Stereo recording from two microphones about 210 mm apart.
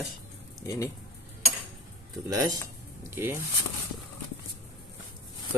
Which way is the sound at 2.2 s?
15° right (ahead or behind).